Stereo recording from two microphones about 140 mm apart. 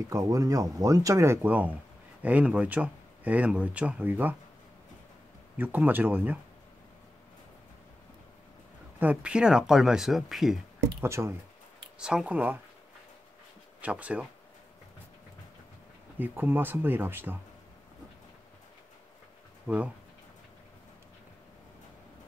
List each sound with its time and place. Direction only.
0.1 s speech: 25° right (ahead or behind)
5.6 s speech: 15° right (ahead or behind)
9.0 s speech: 10° right (ahead or behind)
11.0 s speech: 20° right (ahead or behind)
12.0 s speech: 5° right (ahead or behind)
13.7 s speech: 10° right (ahead or behind)
16.2 s speech: 15° right (ahead or behind)